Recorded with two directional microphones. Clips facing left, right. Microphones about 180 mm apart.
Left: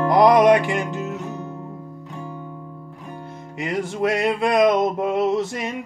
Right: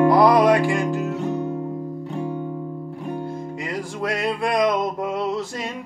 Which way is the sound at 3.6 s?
25° left (ahead or behind).